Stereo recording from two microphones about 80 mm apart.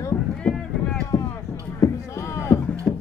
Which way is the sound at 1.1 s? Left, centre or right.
Left.